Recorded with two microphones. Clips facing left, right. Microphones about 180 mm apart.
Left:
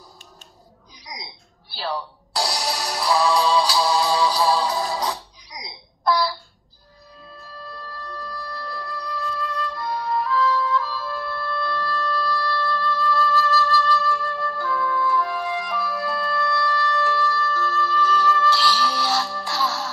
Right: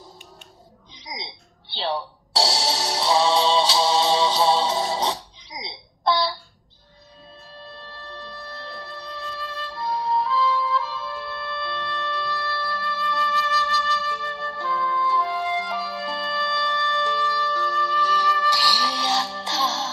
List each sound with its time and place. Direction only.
0.9 s music: 25° right (ahead or behind)
7.6 s music: 25° right (ahead or behind)